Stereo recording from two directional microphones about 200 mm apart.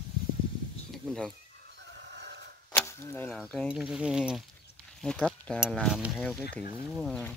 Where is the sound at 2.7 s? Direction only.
10° left (ahead or behind).